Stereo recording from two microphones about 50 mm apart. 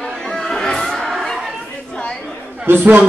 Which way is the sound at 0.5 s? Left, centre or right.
Centre.